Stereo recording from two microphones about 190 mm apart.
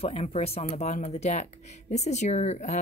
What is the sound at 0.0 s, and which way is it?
Speech, 30° left (ahead or behind).